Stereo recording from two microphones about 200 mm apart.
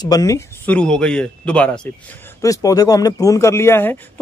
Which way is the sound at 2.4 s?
15° left (ahead or behind).